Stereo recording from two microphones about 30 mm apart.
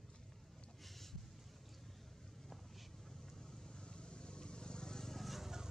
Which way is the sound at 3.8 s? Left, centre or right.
Left.